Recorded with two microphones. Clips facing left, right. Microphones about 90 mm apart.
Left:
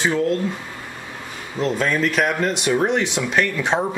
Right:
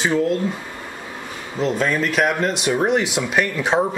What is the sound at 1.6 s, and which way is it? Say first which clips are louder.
Speech: even; centre (ahead or behind).